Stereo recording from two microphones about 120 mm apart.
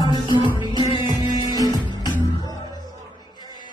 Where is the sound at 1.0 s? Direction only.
30° left (ahead or behind).